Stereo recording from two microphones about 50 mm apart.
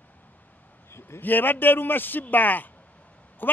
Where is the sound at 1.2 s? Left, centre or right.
Left.